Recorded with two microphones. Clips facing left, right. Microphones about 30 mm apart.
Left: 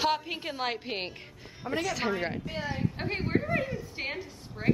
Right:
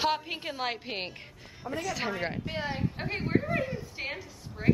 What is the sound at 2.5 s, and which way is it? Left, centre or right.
Speech, right.